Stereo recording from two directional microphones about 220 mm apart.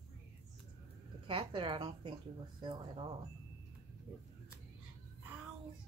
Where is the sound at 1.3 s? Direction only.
25° right (ahead or behind).